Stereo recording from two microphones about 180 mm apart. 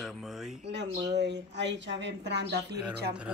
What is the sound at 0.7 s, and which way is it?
Speech, 75° right (ahead or behind).